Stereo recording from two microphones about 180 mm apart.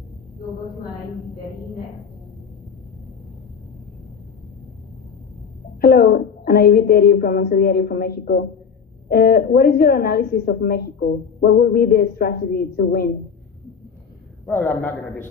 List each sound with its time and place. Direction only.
5.8 s a woman's voice: 60° left (ahead or behind)
14.4 s a man's voice: 10° left (ahead or behind)